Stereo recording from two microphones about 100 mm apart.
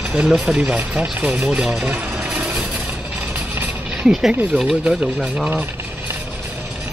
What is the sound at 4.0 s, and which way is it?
Speech, 5° right (ahead or behind).